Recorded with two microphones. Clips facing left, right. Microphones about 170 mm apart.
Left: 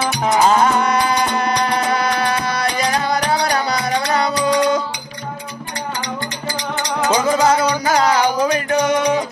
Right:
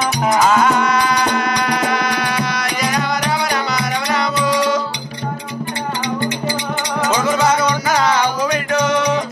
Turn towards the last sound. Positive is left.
turn(degrees=30)  # may be behind; listen again after turning